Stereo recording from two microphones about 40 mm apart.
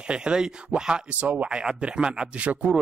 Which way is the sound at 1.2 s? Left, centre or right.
Right.